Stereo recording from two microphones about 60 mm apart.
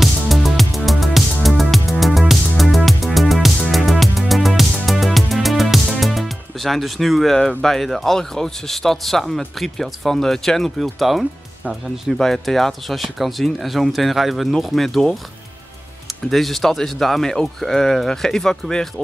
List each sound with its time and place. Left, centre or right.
0.0 s music: centre
7.4 s speech: centre